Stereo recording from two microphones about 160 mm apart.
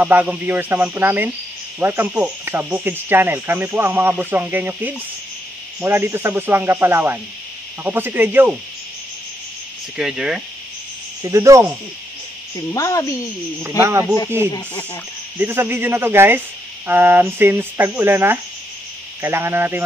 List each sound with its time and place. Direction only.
0.0 s cricket: 10° right (ahead or behind)
9.9 s speech: centre (ahead or behind)
11.2 s speech: 20° right (ahead or behind)
12.7 s speech: 20° left (ahead or behind)
13.6 s cricket: 15° right (ahead or behind)
15.3 s cricket: 15° right (ahead or behind)